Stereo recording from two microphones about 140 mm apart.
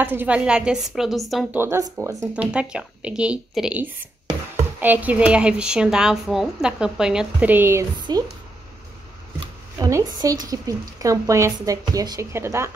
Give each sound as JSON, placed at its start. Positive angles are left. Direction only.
{"t": 0.0, "sound": "a woman's voice", "side_deg": -15}
{"t": 1.5, "sound": "a woman's voice", "side_deg": -15}
{"t": 2.3, "sound": "a woman's voice", "side_deg": -10}
{"t": 9.8, "sound": "a woman's voice", "side_deg": -25}